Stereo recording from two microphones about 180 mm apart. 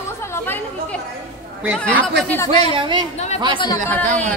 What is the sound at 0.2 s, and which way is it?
Chatter, 15° left (ahead or behind).